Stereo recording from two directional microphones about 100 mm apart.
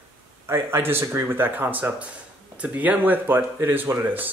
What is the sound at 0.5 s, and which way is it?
Speech, 25° right (ahead or behind).